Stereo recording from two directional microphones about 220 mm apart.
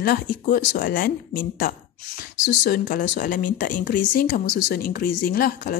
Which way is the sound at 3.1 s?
40° left (ahead or behind).